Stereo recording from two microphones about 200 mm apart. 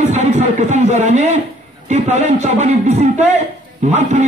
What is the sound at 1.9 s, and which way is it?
A man's voice, 35° right (ahead or behind).